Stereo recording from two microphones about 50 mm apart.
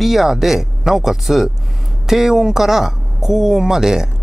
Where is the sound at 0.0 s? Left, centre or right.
Centre.